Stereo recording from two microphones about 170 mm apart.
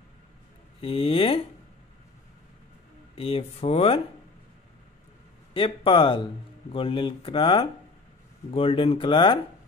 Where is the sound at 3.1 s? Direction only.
35° left (ahead or behind).